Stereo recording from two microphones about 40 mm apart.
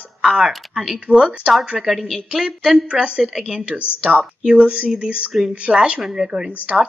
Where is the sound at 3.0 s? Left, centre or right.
Right.